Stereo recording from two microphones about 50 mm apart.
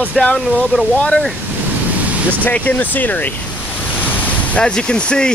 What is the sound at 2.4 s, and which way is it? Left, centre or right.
Speech, left.